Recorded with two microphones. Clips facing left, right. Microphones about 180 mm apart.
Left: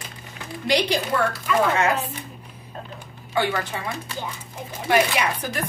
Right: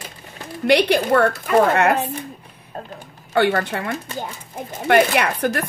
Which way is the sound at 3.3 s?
60° right (ahead or behind).